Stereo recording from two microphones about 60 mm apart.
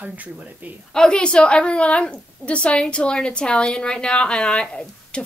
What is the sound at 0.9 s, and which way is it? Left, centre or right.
A woman's voice, centre.